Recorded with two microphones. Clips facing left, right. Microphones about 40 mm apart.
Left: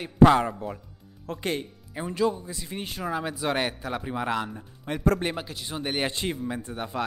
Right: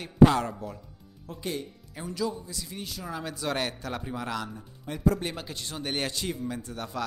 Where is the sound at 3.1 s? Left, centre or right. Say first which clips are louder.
Left 4 dB; centre.